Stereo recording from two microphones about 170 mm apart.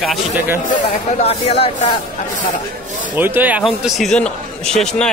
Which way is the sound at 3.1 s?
10° right (ahead or behind).